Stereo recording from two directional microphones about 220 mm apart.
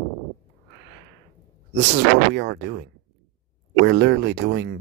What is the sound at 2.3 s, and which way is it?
Speech, 55° right (ahead or behind).